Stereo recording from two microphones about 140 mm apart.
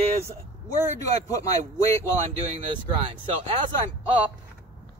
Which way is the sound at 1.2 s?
25° left (ahead or behind).